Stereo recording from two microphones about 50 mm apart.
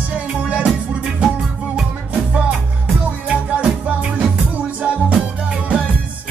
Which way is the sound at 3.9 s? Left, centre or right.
Right.